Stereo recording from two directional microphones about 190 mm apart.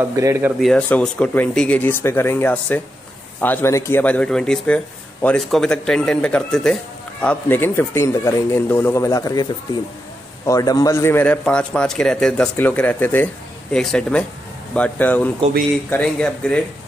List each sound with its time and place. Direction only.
0.1 s speech: 15° right (ahead or behind)
0.6 s speech: 5° left (ahead or behind)